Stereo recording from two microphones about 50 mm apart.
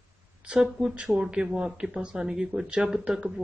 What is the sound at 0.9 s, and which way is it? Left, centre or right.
Speech, centre.